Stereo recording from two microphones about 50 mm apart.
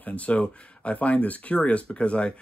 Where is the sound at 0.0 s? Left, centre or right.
Left.